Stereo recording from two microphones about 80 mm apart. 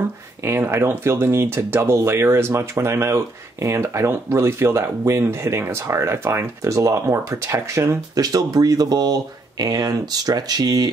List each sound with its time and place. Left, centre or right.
0.5 s speech: right
8.1 s speech: right